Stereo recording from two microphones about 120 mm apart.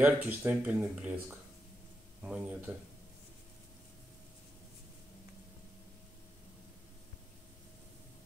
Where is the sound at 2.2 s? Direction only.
10° right (ahead or behind).